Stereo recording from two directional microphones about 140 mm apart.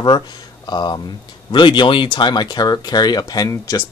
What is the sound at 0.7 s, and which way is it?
Speech, 30° left (ahead or behind).